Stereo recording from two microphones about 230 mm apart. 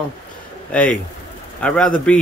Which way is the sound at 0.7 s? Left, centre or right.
Centre.